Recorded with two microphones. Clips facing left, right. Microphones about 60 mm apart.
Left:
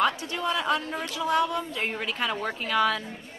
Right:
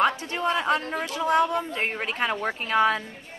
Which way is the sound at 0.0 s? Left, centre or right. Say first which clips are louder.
Right 2 dB; right.